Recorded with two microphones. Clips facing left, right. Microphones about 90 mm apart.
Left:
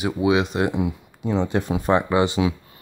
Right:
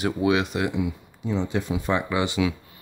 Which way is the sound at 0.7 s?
55° left (ahead or behind).